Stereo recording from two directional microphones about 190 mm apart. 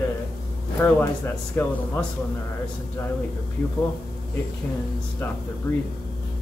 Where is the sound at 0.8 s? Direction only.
10° left (ahead or behind).